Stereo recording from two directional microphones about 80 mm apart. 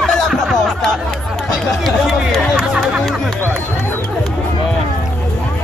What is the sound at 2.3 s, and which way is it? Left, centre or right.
Music, centre.